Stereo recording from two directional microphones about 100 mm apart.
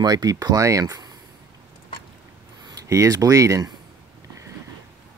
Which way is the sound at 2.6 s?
35° right (ahead or behind).